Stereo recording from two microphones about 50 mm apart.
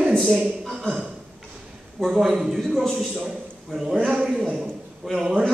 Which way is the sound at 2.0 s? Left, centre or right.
Centre.